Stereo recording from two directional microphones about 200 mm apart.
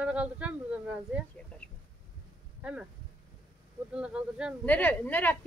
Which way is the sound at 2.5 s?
5° right (ahead or behind).